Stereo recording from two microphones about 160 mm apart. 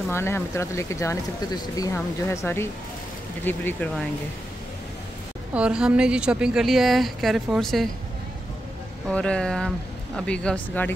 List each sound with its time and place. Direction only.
0.1 s speech: 15° left (ahead or behind)
5.5 s a woman's voice: 5° right (ahead or behind)
9.1 s a woman's voice: 5° left (ahead or behind)